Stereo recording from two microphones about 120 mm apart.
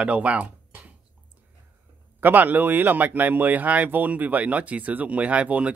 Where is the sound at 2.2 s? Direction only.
15° right (ahead or behind).